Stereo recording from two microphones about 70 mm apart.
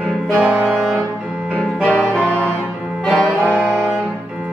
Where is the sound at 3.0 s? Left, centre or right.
Centre.